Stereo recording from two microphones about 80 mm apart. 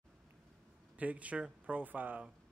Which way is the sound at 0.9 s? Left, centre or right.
Centre.